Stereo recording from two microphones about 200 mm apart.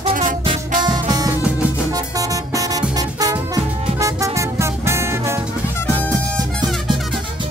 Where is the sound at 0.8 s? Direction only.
20° right (ahead or behind).